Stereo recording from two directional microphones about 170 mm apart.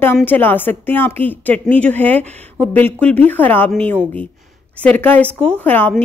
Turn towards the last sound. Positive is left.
turn(degrees=10)  # may be behind; listen again after turning